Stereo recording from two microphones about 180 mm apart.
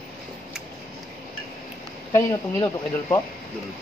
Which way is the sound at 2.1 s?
15° left (ahead or behind).